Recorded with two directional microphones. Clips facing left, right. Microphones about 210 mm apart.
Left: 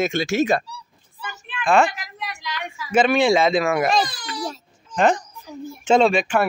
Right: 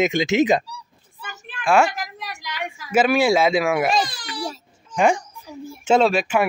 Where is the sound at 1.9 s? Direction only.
45° right (ahead or behind).